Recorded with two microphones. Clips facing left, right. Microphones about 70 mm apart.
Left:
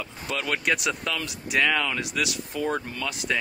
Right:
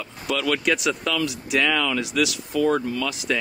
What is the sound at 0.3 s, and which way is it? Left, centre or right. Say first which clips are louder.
Speech: right 5 dB; left.